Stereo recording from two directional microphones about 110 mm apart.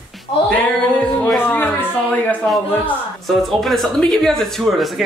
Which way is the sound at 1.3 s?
15° left (ahead or behind).